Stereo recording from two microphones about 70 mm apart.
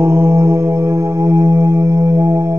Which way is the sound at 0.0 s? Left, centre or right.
Right.